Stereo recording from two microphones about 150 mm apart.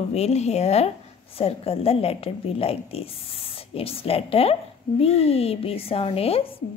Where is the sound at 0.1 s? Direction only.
45° left (ahead or behind).